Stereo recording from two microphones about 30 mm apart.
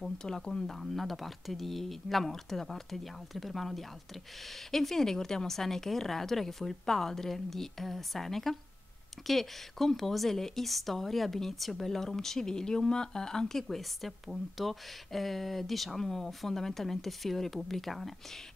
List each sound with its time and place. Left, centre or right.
0.2 s speech: left
0.7 s speech: centre; by 13.6 s left
13.6 s speech: centre
14.2 s speech: centre
16.0 s speech: centre